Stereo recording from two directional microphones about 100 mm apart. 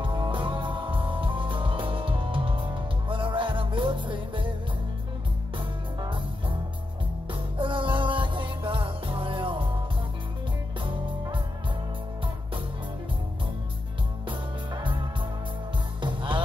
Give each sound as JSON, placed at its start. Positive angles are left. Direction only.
{"t": 0.0, "sound": "music", "side_deg": -55}
{"t": 7.5, "sound": "music", "side_deg": -55}
{"t": 14.8, "sound": "music", "side_deg": -55}